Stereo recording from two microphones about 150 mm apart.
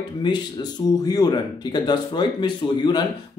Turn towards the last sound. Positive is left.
turn(degrees=30)  # may be behind; listen again after turning